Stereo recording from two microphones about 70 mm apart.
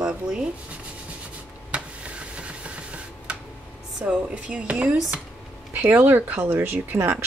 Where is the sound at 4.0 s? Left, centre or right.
Centre; by 7.2 s right.